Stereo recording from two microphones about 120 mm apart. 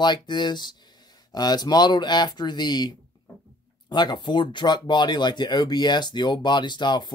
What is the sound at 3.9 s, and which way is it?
Speech, 40° left (ahead or behind).